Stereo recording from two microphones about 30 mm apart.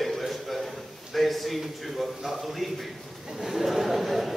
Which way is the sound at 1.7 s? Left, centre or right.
Centre.